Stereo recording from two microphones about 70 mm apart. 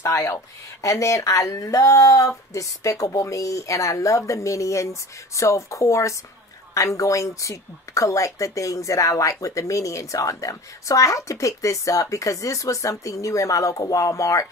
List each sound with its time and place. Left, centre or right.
0.0 s speech: left